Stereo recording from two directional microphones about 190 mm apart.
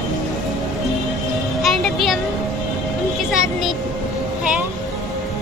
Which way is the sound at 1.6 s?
Centre (ahead or behind).